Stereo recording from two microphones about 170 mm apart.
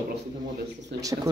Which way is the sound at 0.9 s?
90° right.